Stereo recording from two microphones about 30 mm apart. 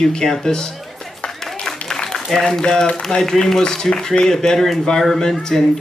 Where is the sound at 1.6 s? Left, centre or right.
Centre.